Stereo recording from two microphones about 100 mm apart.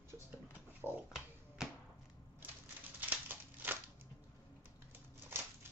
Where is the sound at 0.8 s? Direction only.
20° right (ahead or behind).